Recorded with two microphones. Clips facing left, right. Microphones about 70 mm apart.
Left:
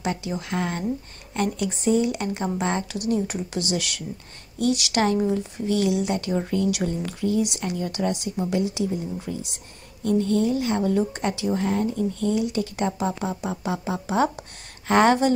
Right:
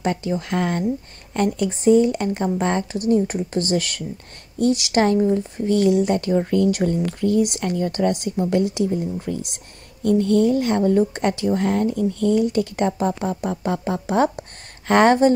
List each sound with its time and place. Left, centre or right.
0.0 s speech: right
4.7 s speech: right
5.3 s speech: right
13.3 s speech: centre
13.6 s speech: right